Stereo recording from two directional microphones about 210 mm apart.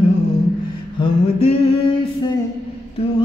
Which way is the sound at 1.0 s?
25° left (ahead or behind).